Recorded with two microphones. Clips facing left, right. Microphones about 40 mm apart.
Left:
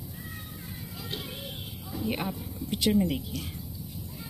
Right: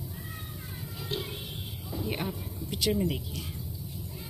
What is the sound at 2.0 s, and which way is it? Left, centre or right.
Speech, centre.